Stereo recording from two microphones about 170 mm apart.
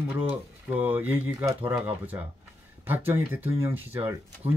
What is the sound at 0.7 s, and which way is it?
Speech, 10° right (ahead or behind).